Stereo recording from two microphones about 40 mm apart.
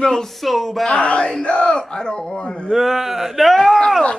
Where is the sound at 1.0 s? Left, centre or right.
Left.